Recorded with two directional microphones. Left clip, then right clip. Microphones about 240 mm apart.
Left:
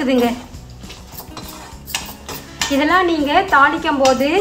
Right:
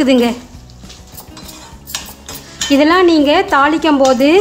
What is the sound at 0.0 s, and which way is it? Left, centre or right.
Speech, right.